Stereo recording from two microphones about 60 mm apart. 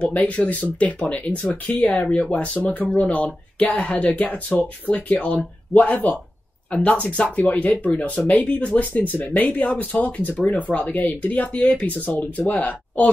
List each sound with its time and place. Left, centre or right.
0.0 s speech: left
1.7 s speech: left
2.0 s speech: centre